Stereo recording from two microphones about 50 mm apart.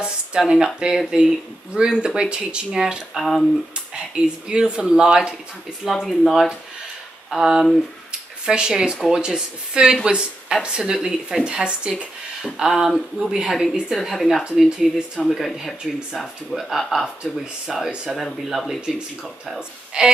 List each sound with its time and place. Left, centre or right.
0.4 s speech: centre
3.2 s speech: centre
4.1 s speech: centre
6.0 s speech: centre
7.2 s speech: centre